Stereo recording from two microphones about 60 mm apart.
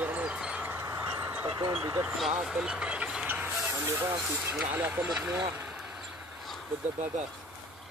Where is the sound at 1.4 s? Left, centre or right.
Right.